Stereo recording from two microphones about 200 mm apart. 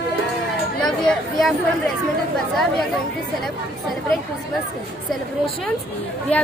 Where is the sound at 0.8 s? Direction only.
Centre (ahead or behind).